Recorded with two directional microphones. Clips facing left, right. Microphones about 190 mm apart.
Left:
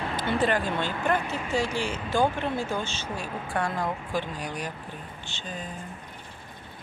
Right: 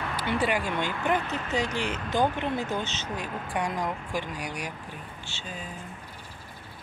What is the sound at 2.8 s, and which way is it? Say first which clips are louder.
Speech: even; 20° right (ahead or behind).